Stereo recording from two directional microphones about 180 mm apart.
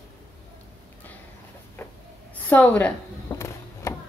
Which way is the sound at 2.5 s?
10° left (ahead or behind).